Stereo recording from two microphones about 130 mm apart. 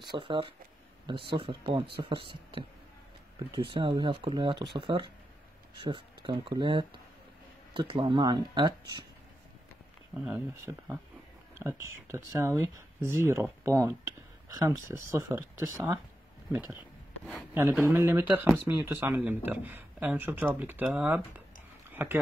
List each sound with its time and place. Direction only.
0.1 s speech: 40° right (ahead or behind)
10.3 s speech: 20° right (ahead or behind)
12.3 s speech: 20° right (ahead or behind)
17.6 s speech: 20° right (ahead or behind)